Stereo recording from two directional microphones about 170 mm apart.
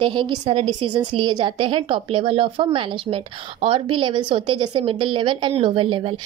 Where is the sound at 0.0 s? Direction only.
30° right (ahead or behind).